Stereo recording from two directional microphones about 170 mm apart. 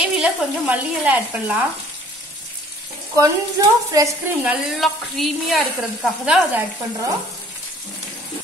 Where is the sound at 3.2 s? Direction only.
20° right (ahead or behind).